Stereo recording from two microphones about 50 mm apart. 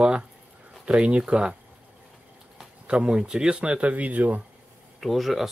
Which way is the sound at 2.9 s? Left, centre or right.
Right.